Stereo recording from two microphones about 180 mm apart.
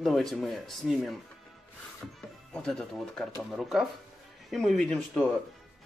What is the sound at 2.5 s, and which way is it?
Speech, 5° left (ahead or behind).